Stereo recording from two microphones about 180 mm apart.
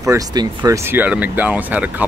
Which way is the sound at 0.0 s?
20° right (ahead or behind).